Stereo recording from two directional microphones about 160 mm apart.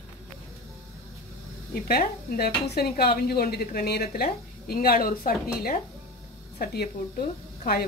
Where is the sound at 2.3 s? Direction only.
85° left.